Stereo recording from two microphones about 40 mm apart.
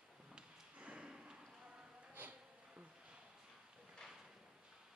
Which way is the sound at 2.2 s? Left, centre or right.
Right.